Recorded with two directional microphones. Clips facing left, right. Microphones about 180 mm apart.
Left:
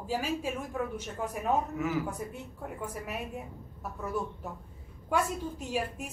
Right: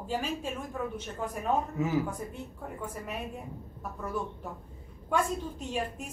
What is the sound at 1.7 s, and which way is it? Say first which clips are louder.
Speech: right 2 dB; 25° right (ahead or behind).